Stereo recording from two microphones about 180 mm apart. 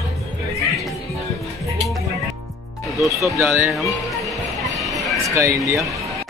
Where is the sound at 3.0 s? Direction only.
Centre (ahead or behind).